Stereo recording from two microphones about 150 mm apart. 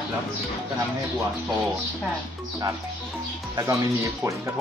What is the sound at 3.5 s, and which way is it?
Speech, 20° right (ahead or behind).